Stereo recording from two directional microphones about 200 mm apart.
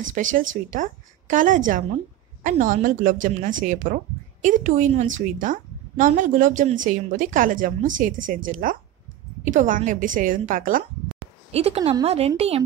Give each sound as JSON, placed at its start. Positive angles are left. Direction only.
{"t": 0.0, "sound": "a woman's voice", "side_deg": -40}
{"t": 11.5, "sound": "speech", "side_deg": -30}